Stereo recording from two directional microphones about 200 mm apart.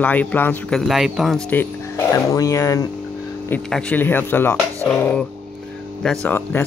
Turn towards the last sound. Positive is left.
turn(degrees=10)  # may be behind; listen again after turning